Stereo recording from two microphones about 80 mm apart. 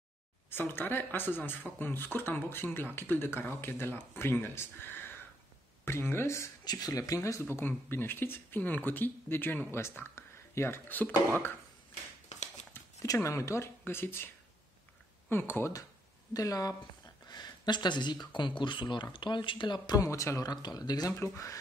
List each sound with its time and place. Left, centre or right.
0.5 s speech: left
6.6 s speech: left
6.9 s speech: left
7.4 s speech: left
13.0 s speech: left
16.3 s speech: left
17.3 s speech: left
19.9 s speech: left
20.4 s speech: left
21.1 s speech: left